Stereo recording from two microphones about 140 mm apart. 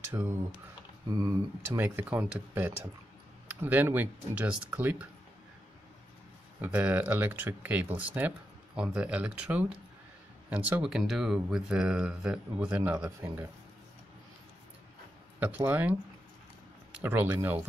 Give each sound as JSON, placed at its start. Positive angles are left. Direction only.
{"t": 0.1, "sound": "speech", "side_deg": -25}
{"t": 6.6, "sound": "speech", "side_deg": -10}
{"t": 15.6, "sound": "speech", "side_deg": -10}
{"t": 17.0, "sound": "speech", "side_deg": -15}